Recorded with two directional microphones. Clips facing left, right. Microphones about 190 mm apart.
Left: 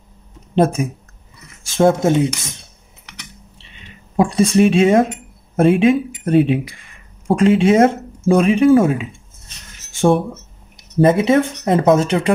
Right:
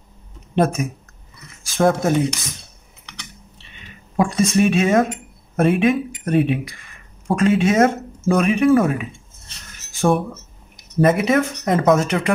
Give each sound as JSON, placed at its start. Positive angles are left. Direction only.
{"t": 0.6, "sound": "speech", "side_deg": 30}
{"t": 4.2, "sound": "speech", "side_deg": 30}